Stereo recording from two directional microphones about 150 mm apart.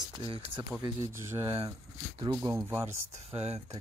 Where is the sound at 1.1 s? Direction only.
15° right (ahead or behind).